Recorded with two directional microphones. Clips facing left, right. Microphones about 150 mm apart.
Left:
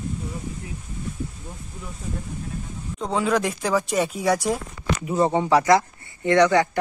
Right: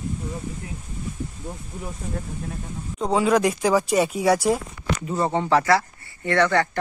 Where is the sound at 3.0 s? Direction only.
10° right (ahead or behind).